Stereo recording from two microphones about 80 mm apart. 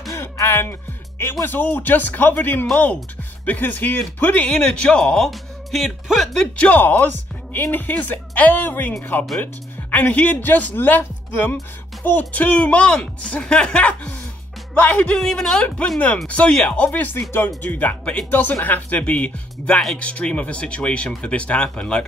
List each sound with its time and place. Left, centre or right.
0.1 s music: left
1.4 s speech: left; by 6.4 s centre
6.6 s speech: left